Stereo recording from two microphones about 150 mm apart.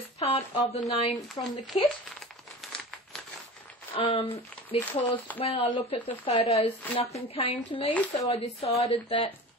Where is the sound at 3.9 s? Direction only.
40° left (ahead or behind).